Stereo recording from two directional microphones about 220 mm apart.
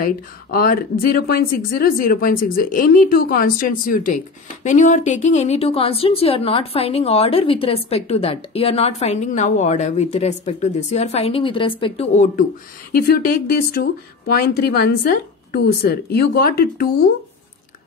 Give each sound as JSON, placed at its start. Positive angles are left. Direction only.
{"t": 0.0, "sound": "a woman's voice", "side_deg": 40}